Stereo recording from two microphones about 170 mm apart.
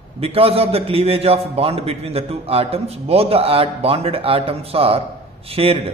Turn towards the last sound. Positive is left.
turn(degrees=-35)  # may be behind; listen again after turning